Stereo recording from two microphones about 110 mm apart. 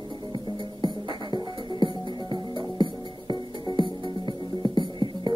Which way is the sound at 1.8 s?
45° right (ahead or behind).